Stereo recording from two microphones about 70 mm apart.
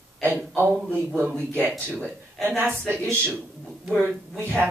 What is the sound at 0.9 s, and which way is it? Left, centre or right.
Speech, right.